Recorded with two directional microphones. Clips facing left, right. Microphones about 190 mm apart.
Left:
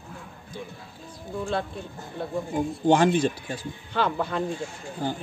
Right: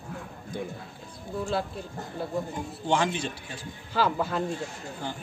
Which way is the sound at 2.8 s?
45° left (ahead or behind).